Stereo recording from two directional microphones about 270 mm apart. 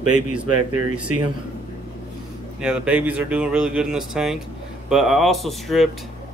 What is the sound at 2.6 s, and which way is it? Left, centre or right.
Speech, centre.